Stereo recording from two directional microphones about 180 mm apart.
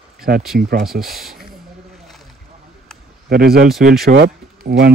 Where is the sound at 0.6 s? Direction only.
60° right (ahead or behind).